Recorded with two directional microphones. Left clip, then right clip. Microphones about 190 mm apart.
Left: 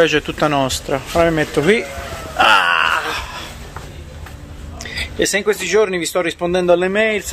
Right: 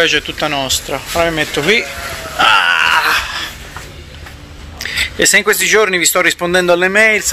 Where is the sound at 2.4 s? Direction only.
30° left (ahead or behind).